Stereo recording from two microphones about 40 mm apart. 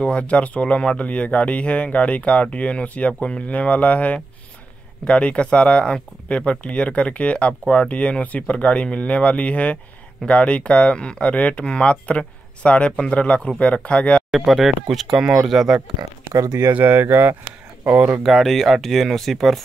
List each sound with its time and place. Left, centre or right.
0.0 s speech: left
14.3 s speech: centre
16.7 s speech: right
17.0 s speech: right
18.2 s speech: centre